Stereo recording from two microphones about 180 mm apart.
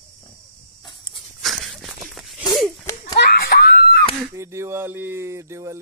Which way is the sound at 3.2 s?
60° left (ahead or behind).